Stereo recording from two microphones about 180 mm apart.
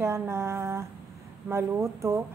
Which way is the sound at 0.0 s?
15° right (ahead or behind).